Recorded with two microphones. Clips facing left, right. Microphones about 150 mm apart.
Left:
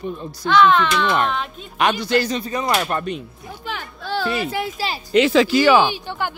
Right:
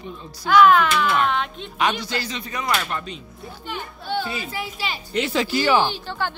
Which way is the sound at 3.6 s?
90° left.